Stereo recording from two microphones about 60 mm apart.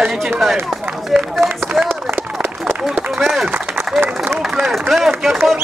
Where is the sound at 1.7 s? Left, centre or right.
Right.